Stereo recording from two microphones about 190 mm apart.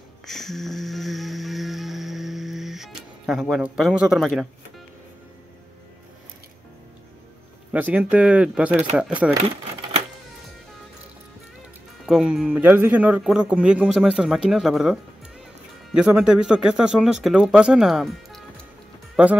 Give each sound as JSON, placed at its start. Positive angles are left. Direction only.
{"t": 0.3, "sound": "a sound", "side_deg": 0}
{"t": 7.7, "sound": "a man's voice", "side_deg": -10}
{"t": 12.1, "sound": "a man's voice", "side_deg": -5}